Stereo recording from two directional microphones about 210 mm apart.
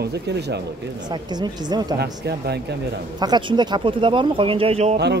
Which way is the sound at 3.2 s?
20° right (ahead or behind).